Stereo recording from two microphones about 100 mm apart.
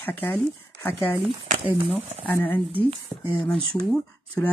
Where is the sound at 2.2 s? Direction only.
15° left (ahead or behind).